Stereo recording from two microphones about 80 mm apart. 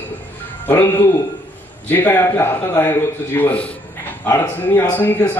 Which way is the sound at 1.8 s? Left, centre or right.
Left.